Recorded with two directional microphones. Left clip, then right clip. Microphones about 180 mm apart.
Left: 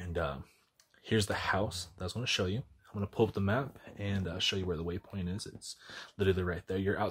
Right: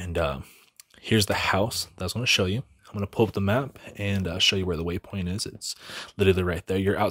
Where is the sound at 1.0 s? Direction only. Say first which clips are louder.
Right 8 dB; 35° right (ahead or behind).